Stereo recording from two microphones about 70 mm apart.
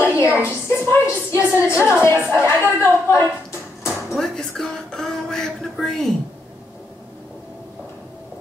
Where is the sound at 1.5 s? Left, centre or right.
Left.